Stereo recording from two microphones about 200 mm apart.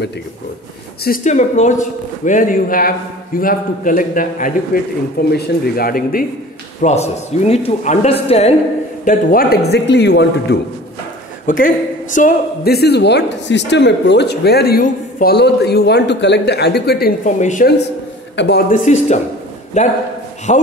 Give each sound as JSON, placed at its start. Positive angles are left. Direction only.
{"t": 1.0, "sound": "a man's voice", "side_deg": 40}
{"t": 6.8, "sound": "a man's voice", "side_deg": 35}
{"t": 9.0, "sound": "a man's voice", "side_deg": 45}
{"t": 11.4, "sound": "speech", "side_deg": 40}
{"t": 18.3, "sound": "a man's voice", "side_deg": 60}
{"t": 18.9, "sound": "a man's voice", "side_deg": 35}